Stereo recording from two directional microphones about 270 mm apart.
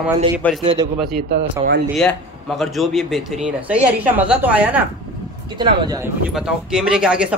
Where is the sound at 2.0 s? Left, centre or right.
Centre.